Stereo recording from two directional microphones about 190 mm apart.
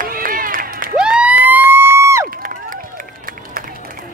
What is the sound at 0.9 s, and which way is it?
Crowd, 5° right (ahead or behind).